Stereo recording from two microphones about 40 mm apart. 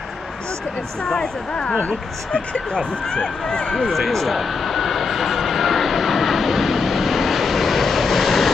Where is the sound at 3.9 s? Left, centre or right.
Centre.